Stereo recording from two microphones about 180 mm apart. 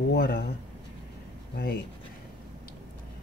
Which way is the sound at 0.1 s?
55° left (ahead or behind).